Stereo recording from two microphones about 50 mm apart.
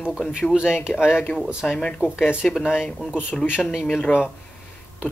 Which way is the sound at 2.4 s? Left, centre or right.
Centre.